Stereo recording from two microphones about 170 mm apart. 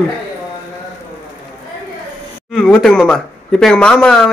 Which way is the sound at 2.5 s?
Centre (ahead or behind).